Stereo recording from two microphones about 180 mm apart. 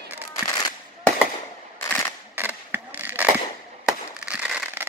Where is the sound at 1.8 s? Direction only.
15° left (ahead or behind).